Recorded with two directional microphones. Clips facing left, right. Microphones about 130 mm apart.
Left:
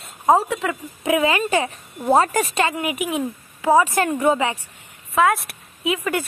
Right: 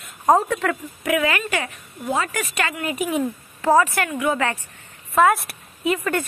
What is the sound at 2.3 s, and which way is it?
Speech, 25° left (ahead or behind).